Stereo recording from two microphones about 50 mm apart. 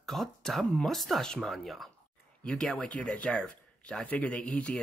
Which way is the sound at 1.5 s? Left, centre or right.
Centre.